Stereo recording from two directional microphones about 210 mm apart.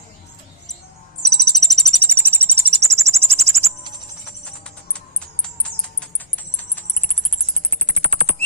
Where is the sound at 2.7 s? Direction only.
30° right (ahead or behind).